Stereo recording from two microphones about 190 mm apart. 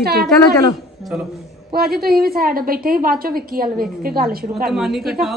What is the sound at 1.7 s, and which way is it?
A woman's voice, 50° right (ahead or behind).